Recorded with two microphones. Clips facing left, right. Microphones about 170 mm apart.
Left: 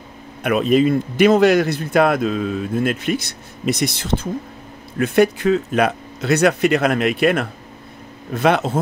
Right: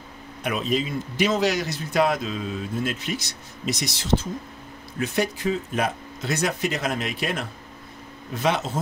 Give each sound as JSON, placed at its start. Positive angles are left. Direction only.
{"t": 0.4, "sound": "speech", "side_deg": 60}